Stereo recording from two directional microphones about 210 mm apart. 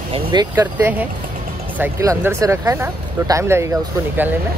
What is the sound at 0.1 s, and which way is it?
Speech, 20° right (ahead or behind).